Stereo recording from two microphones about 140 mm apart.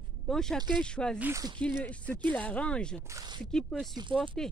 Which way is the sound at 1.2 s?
20° right (ahead or behind).